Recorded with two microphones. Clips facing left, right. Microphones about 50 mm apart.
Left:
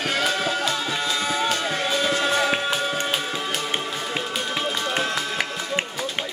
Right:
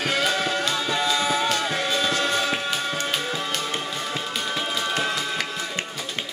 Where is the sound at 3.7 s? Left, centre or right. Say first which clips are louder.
Left 1 dB; centre.